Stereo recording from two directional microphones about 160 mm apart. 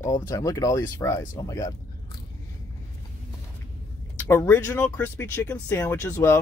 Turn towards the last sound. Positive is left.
turn(degrees=15)  # may be behind; listen again after turning